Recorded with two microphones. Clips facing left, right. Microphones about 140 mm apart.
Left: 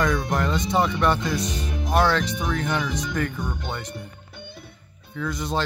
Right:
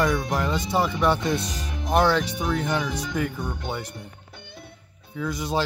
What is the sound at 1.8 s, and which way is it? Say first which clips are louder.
Speech: right 1 dB; 20° right (ahead or behind).